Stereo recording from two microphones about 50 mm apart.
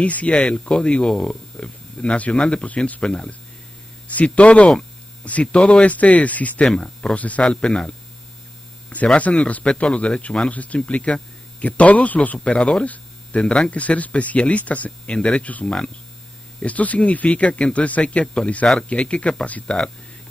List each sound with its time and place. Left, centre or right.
0.0 s speech: left
6.6 s speech: centre
7.2 s speech: left
8.9 s speech: left
10.5 s speech: left
12.4 s speech: centre
12.8 s a sound: left
13.4 s speech: left
15.6 s speech: centre
16.5 s speech: left